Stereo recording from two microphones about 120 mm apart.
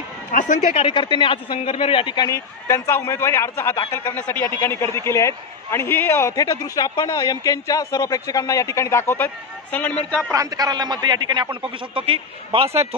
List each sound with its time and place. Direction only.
0.3 s a woman's voice: 90° left
0.8 s speech: 40° left (ahead or behind)
2.3 s a man's voice: 25° left (ahead or behind)
10.3 s a man's voice: 30° right (ahead or behind); by 12.8 s 55° right (ahead or behind)